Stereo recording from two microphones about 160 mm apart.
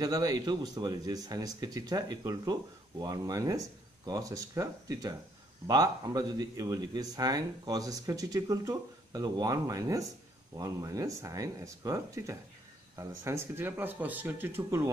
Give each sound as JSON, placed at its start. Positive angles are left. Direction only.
{"t": 0.0, "sound": "speech", "side_deg": -25}